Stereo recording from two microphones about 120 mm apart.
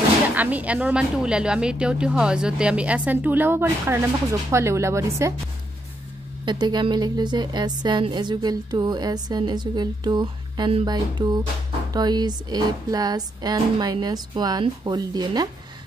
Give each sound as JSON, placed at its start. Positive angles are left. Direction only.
{"t": 0.3, "sound": "speech", "side_deg": -15}
{"t": 6.4, "sound": "a woman's voice", "side_deg": -35}